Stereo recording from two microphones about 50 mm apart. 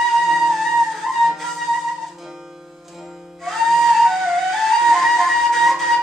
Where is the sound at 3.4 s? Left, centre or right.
Centre.